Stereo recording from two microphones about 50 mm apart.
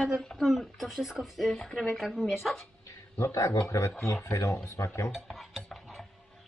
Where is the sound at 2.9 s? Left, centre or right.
Left.